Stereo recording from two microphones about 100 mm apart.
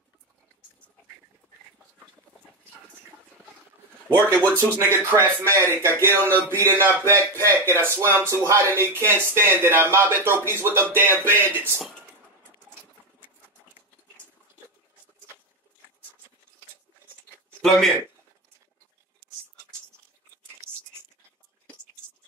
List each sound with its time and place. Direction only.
4.4 s speech: 20° right (ahead or behind)
17.6 s a man's voice: centre (ahead or behind)